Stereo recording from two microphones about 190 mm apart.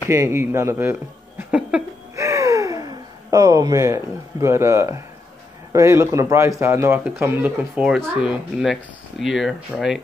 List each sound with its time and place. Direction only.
0.1 s speech: 15° right (ahead or behind)
1.5 s a sound: 10° right (ahead or behind)
5.7 s speech: 15° right (ahead or behind)